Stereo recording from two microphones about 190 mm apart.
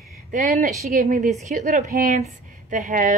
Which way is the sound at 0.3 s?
45° right (ahead or behind).